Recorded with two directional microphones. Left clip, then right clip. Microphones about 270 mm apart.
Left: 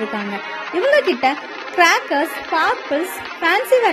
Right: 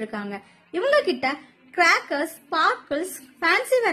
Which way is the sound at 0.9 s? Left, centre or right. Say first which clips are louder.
Left 5 dB; centre.